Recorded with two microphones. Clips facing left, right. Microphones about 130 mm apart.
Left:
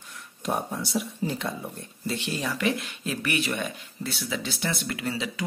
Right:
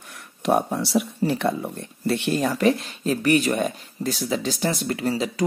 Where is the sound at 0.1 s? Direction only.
70° right (ahead or behind).